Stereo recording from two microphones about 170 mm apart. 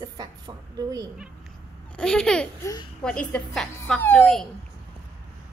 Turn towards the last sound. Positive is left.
turn(degrees=5)  # may be behind; listen again after turning